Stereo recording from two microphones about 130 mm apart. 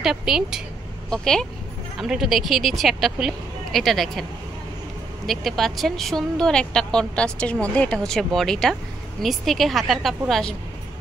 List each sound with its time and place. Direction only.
0.0 s speech: 5° right (ahead or behind)